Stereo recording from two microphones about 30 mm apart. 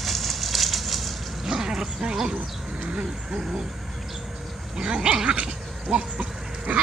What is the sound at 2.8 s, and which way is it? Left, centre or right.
Speech, right.